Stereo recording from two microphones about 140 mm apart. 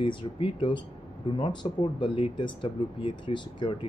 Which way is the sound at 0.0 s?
40° left (ahead or behind).